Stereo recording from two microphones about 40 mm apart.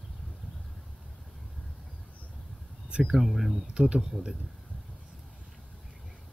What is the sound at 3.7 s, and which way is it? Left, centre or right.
Speech, right.